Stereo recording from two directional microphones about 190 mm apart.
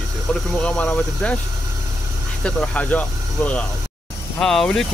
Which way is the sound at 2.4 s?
5° left (ahead or behind).